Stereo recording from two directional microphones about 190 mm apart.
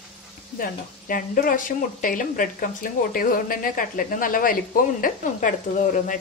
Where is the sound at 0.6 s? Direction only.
45° left (ahead or behind).